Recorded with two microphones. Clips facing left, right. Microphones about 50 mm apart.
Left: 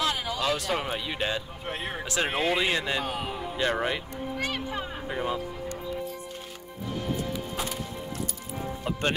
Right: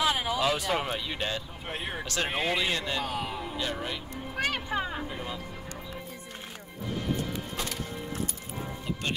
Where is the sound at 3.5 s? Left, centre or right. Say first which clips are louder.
Left 8 dB; left.